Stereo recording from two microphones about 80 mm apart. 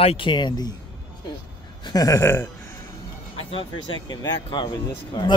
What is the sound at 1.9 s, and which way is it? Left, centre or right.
Speech, left.